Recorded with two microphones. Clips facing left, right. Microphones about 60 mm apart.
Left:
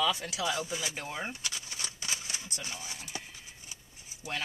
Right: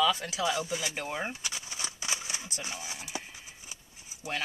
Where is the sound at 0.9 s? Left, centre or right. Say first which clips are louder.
Right 3 dB; right.